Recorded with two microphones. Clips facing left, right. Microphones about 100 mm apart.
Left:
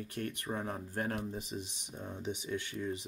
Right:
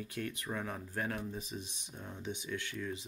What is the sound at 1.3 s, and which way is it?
Speech, 15° left (ahead or behind).